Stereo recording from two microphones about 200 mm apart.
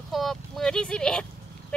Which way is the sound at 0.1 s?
Centre (ahead or behind).